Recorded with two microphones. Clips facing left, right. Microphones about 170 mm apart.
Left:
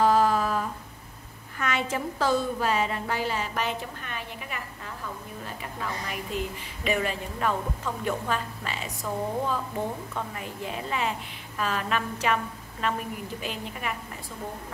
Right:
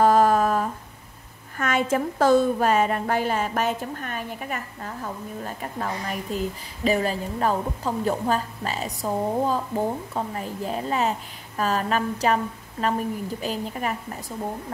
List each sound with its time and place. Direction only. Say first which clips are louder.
0.0 s humming: right 4 dB; 50° right (ahead or behind)
1.6 s a woman's voice: right 6 dB; 45° right (ahead or behind)
13.4 s a woman's voice: right 6 dB; 40° right (ahead or behind)